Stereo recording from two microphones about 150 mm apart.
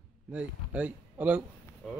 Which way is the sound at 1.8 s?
5° left (ahead or behind).